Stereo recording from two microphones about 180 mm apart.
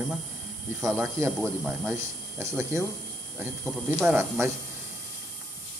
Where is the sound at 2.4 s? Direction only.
15° right (ahead or behind).